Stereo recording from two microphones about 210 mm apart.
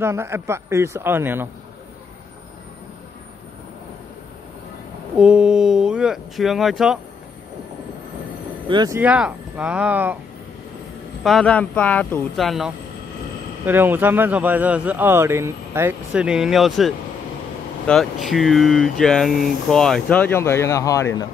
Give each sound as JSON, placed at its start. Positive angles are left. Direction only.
{"t": 0.0, "sound": "speech", "side_deg": -10}
{"t": 5.1, "sound": "speech", "side_deg": -5}
{"t": 8.6, "sound": "speech", "side_deg": -20}
{"t": 9.0, "sound": "speech", "side_deg": -5}
{"t": 11.2, "sound": "speech", "side_deg": 5}